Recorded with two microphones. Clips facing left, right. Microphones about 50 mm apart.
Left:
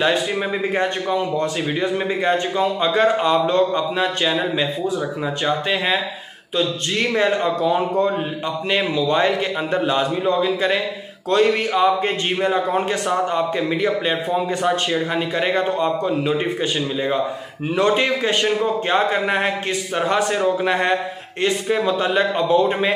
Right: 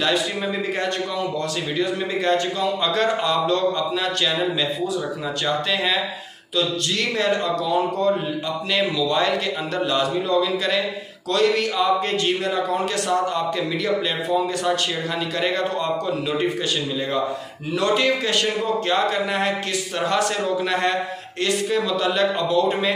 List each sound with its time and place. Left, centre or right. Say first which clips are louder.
0.7 s a man's voice: left 4 dB; left
5.4 s a man's voice: left 1 dB; left
17.7 s a man's voice: left 2 dB; left